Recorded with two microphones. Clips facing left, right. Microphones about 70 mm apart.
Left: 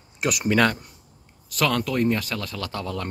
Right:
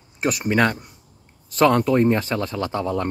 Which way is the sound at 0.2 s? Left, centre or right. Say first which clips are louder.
Right 1 dB; right.